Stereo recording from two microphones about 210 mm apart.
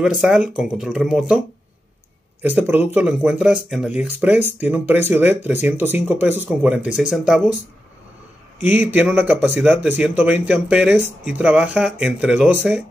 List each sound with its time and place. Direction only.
0.0 s speech: centre (ahead or behind)
2.4 s speech: 10° right (ahead or behind)
8.5 s speech: 10° right (ahead or behind)